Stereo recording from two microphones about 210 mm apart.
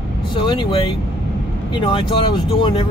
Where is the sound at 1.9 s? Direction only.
20° left (ahead or behind).